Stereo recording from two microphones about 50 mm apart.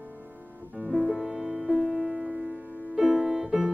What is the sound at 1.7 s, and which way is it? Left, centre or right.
Music, centre.